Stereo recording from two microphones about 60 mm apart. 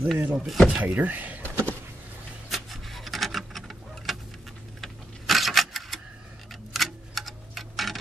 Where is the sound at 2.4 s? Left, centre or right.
Centre.